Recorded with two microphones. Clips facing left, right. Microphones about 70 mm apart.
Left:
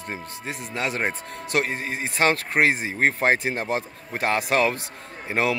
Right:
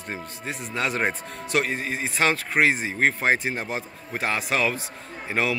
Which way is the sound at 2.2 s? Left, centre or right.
Left.